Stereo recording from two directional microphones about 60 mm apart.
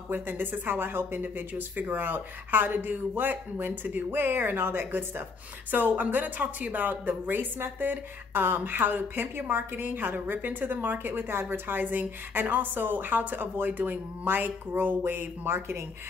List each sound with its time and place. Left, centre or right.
0.1 s speech: right